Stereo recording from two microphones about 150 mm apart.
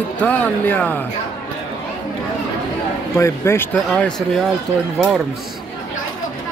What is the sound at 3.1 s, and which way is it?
Speech, 15° left (ahead or behind).